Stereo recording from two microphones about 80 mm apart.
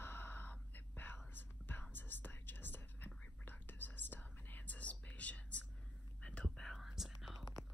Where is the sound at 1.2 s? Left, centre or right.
Left.